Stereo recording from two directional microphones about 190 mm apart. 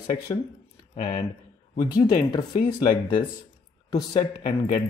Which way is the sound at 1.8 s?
20° left (ahead or behind).